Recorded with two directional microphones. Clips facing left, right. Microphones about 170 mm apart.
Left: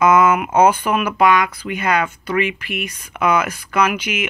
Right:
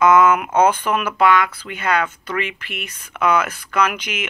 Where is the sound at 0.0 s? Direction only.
10° left (ahead or behind).